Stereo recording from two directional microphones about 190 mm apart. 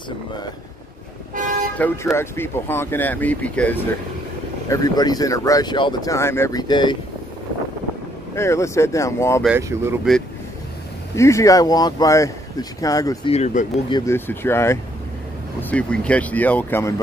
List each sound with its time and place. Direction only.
1.3 s toot: 45° right (ahead or behind)
1.8 s speech: 15° left (ahead or behind)
4.6 s speech: 20° left (ahead or behind)
8.4 s speech: 15° left (ahead or behind)
9.6 s speech: 15° right (ahead or behind)
11.1 s speech: 15° left (ahead or behind)
13.3 s speech: 40° left (ahead or behind)
13.8 s speech: 20° left (ahead or behind)
14.1 s speech: 10° left (ahead or behind)